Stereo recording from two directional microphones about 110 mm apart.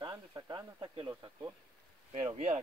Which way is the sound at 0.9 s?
45° right (ahead or behind).